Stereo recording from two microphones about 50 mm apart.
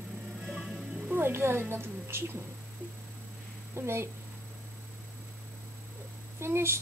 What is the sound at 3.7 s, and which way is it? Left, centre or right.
Speech, right.